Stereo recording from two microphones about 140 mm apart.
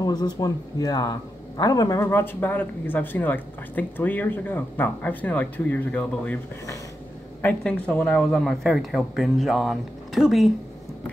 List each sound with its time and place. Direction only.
0.0 s speech: 30° left (ahead or behind); by 6.4 s 10° left (ahead or behind)
7.4 s speech: 10° left (ahead or behind)